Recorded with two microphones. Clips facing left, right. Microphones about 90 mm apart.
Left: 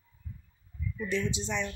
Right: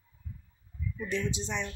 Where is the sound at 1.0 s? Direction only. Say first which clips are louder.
Left 1 dB; 35° right (ahead or behind).